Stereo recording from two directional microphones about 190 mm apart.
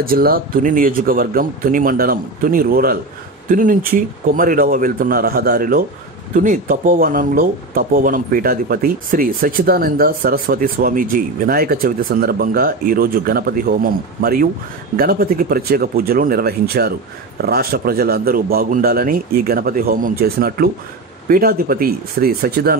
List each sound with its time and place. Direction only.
0.0 s speech: 50° right (ahead or behind)